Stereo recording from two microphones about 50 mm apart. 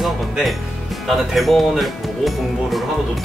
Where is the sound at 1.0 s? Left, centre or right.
Centre.